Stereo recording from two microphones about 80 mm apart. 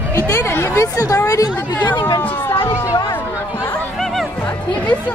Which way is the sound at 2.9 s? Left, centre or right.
Left.